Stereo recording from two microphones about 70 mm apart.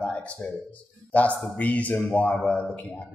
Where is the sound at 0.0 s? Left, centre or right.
Centre.